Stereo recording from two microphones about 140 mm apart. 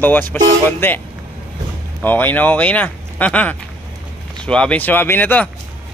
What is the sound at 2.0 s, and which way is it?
Speech, 15° left (ahead or behind).